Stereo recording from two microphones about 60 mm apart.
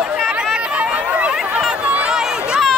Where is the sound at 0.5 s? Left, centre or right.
Centre.